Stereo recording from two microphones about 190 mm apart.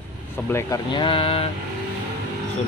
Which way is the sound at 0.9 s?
25° left (ahead or behind).